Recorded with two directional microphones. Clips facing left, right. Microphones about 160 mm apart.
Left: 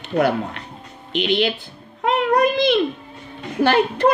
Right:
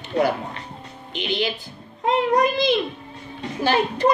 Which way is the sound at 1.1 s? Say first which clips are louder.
Left 5 dB; 65° left (ahead or behind).